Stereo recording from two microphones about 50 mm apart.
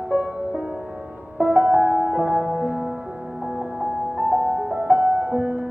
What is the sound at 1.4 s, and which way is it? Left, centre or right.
Music, right.